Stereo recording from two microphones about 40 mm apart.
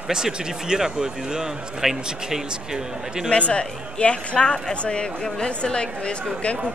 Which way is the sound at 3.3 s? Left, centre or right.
Left.